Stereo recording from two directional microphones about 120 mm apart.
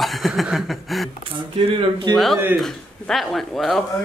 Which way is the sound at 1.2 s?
45° right (ahead or behind).